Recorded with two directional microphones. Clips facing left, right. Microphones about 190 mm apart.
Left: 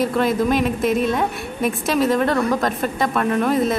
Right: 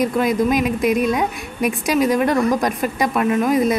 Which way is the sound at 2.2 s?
15° right (ahead or behind).